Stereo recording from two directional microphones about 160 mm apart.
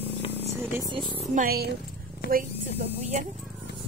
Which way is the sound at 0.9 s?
30° right (ahead or behind).